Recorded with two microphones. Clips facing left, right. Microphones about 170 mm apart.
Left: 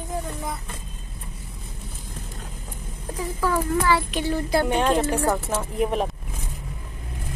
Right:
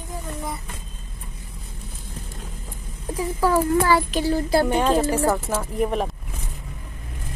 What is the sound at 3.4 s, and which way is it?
Speech, 35° right (ahead or behind).